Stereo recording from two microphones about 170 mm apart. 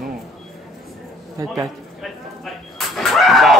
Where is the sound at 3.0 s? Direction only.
Centre (ahead or behind).